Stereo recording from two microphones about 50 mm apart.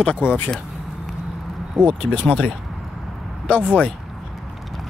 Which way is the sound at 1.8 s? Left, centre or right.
Right.